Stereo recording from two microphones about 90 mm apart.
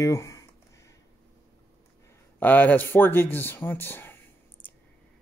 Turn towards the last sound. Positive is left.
turn(degrees=25)  # may be behind; listen again after turning